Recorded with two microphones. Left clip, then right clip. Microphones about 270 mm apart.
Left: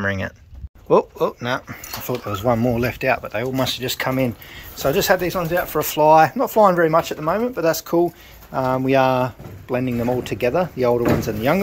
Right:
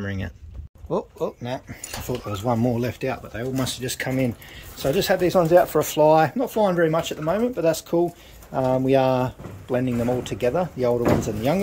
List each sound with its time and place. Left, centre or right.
0.0 s speech: centre
0.8 s speech: left
1.4 s speech: centre
5.3 s speech: centre